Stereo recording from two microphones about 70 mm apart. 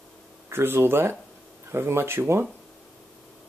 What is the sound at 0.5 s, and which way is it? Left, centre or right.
Speech, right.